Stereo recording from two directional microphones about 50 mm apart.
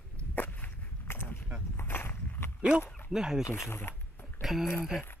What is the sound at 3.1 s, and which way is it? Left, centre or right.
Speech, centre.